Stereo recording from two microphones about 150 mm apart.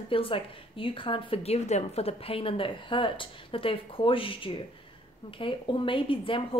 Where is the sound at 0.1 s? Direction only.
35° left (ahead or behind).